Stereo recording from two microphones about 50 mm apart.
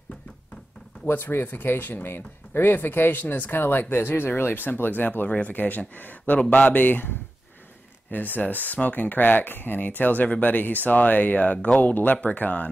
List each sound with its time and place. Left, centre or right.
1.0 s speech: left